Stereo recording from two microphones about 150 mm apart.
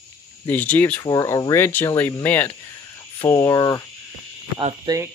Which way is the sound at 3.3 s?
25° left (ahead or behind).